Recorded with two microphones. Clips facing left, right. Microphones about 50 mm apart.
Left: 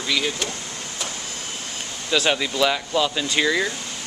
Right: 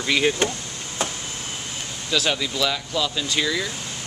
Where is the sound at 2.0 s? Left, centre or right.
Centre.